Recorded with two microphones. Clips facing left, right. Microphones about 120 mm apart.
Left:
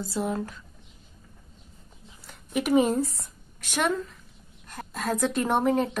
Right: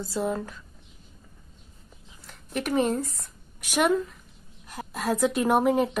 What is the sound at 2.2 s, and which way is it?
Speech, 10° left (ahead or behind).